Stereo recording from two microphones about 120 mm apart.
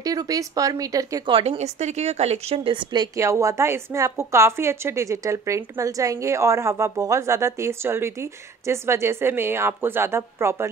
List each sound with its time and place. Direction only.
0.0 s a woman's voice: 30° right (ahead or behind)
1.2 s a woman's voice: 45° right (ahead or behind)
1.6 s speech: 75° right (ahead or behind); by 3.1 s 40° right (ahead or behind)
3.2 s a woman's voice: 25° right (ahead or behind)